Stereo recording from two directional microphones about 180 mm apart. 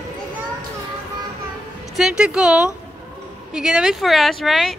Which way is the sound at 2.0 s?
5° right (ahead or behind).